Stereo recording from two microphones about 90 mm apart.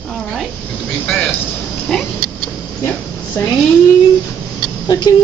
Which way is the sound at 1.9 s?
5° left (ahead or behind).